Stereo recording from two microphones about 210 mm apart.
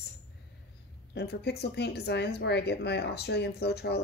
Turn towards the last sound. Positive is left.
turn(degrees=50)  # may be behind; listen again after turning